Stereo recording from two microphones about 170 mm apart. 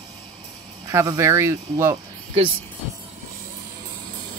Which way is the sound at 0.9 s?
15° right (ahead or behind).